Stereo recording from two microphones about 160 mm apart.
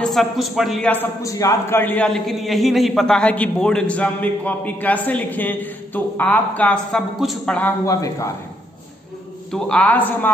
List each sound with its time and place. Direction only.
0.0 s a man's voice: centre (ahead or behind)
7.5 s a man's voice: 15° left (ahead or behind)
9.5 s a man's voice: 5° left (ahead or behind)